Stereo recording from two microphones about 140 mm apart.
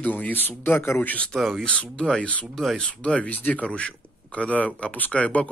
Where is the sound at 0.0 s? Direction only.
10° left (ahead or behind).